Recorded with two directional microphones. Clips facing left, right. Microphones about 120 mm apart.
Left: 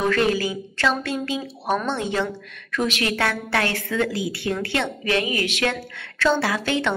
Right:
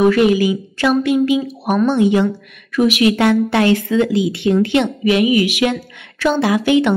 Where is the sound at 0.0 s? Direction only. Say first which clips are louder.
Right 8 dB; 15° right (ahead or behind).